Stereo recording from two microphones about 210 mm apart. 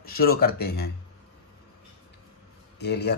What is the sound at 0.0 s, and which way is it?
Speech, 45° left (ahead or behind).